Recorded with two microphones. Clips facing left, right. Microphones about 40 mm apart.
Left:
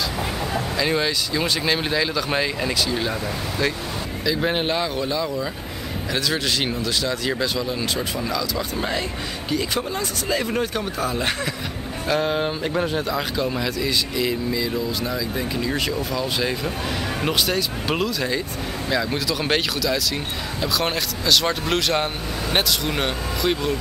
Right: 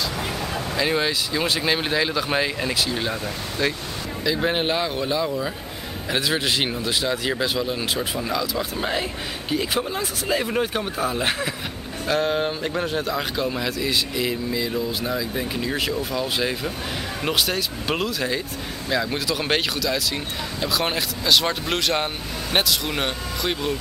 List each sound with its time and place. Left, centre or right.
0.7 s speech: centre